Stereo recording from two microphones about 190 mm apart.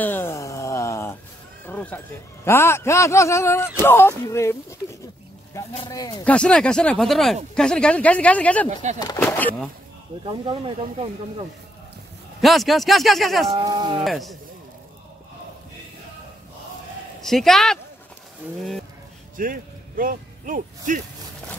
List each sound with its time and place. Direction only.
0.0 s a sound: 10° left (ahead or behind)
2.4 s a man's voice: 15° left (ahead or behind)
6.2 s a man's voice: 5° left (ahead or behind)
8.6 s speech: 40° right (ahead or behind)
9.0 s a man's voice: 15° left (ahead or behind)
10.2 s speech: 25° right (ahead or behind)
12.4 s speech: centre (ahead or behind)
13.5 s speech: 25° right (ahead or behind)
14.0 s speech: centre (ahead or behind)
17.2 s speech: centre (ahead or behind)
19.3 s speech: 45° right (ahead or behind)